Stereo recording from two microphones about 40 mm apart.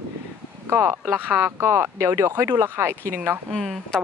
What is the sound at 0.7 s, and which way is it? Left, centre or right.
Speech, right.